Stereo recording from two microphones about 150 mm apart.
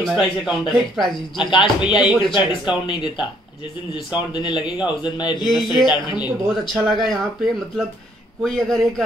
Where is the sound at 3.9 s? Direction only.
30° left (ahead or behind).